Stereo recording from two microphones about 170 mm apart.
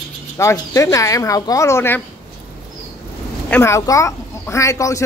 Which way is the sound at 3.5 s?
15° left (ahead or behind).